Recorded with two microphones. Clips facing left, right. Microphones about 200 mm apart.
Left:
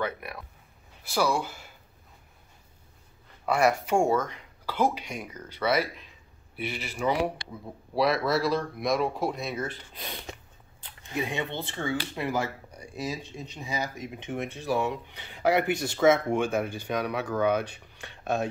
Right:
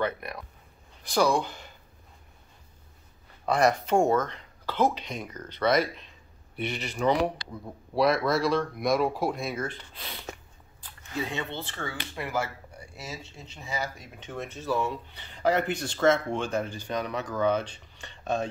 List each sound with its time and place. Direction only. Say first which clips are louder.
0.0 s speech: right 2 dB; 10° left (ahead or behind)
3.4 s speech: even; 10° left (ahead or behind)
10.8 s speech: left 1 dB; 20° left (ahead or behind)